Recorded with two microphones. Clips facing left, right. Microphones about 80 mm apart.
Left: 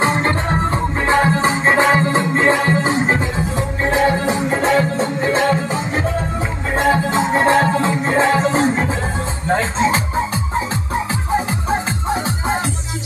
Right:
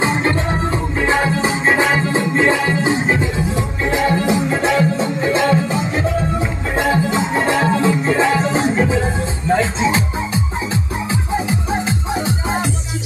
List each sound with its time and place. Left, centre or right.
0.0 s music: left